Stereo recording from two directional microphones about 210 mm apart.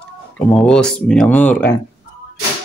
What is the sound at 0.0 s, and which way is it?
Speech, 5° left (ahead or behind).